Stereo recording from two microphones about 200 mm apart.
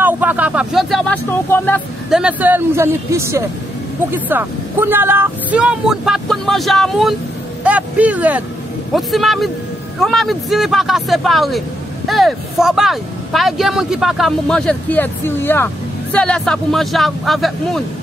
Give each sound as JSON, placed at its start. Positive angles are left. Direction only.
{"t": 0.0, "sound": "speech", "side_deg": -10}
{"t": 2.0, "sound": "speech", "side_deg": -5}